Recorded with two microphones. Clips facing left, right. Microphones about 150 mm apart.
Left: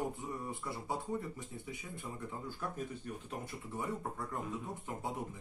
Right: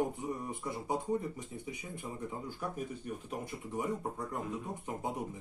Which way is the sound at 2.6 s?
15° right (ahead or behind).